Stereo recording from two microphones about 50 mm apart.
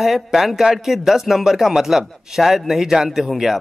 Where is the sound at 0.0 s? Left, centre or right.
Centre.